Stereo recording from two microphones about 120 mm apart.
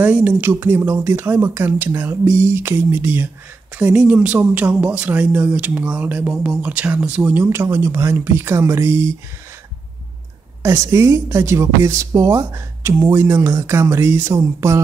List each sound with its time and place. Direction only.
0.0 s speech: 15° right (ahead or behind)
10.6 s speech: 25° right (ahead or behind)